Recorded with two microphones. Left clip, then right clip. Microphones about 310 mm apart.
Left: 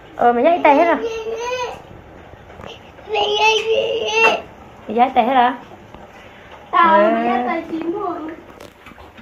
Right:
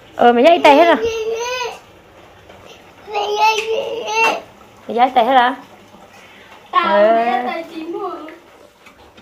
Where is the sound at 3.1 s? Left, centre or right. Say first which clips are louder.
Even; centre.